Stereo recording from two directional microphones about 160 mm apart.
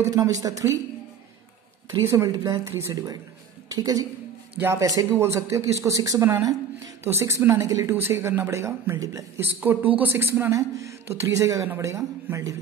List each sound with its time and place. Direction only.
0.0 s speech: 20° right (ahead or behind)
1.9 s speech: 20° right (ahead or behind)